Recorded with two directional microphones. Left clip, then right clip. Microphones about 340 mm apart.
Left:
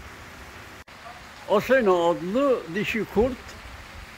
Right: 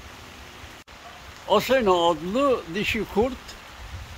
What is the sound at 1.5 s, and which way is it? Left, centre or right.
Speech, centre.